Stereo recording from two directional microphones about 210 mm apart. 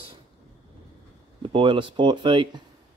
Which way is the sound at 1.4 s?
25° right (ahead or behind).